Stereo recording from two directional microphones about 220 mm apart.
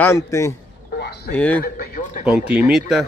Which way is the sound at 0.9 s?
45° left (ahead or behind).